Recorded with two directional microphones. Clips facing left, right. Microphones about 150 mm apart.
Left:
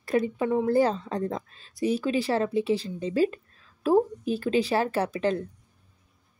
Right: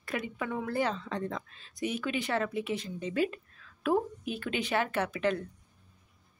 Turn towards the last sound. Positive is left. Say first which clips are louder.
# left 4 dB
turn(degrees=35)  # may be behind; listen again after turning